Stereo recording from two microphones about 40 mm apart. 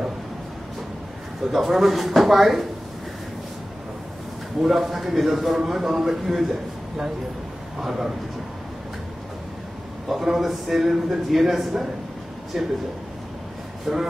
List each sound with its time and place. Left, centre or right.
1.5 s a man's voice: centre
4.6 s a man's voice: centre
7.8 s a man's voice: centre
10.0 s a man's voice: centre
13.9 s a man's voice: centre